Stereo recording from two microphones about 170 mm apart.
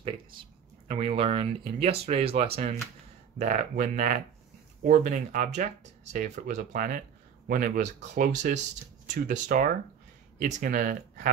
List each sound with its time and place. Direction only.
0.8 s speech: 35° right (ahead or behind)
3.3 s speech: 50° right (ahead or behind)